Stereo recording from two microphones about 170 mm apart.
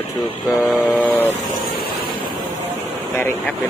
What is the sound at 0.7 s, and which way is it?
Vehicle, 10° left (ahead or behind).